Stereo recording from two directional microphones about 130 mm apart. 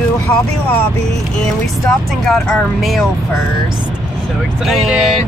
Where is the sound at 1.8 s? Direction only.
Centre (ahead or behind).